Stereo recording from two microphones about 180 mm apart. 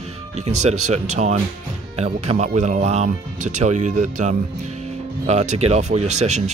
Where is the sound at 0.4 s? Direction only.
40° right (ahead or behind).